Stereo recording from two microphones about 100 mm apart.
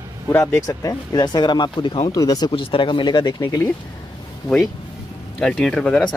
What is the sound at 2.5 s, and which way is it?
Speech, 60° left (ahead or behind).